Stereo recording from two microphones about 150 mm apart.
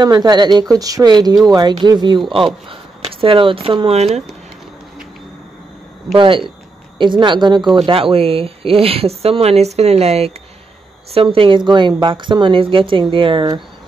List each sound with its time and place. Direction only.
0.0 s speech: 30° right (ahead or behind); by 4.2 s 45° right (ahead or behind)
6.1 s speech: 35° right (ahead or behind)